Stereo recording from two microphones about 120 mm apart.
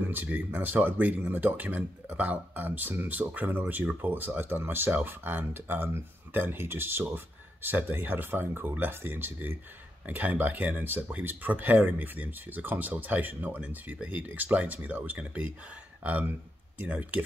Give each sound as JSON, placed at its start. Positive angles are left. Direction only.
{"t": 0.0, "sound": "speech", "side_deg": -15}